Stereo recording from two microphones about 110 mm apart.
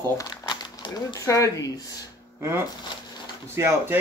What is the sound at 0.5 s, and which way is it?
Crumpling, 40° left (ahead or behind).